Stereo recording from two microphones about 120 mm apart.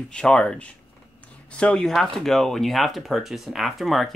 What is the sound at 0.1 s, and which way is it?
Speech, 5° left (ahead or behind).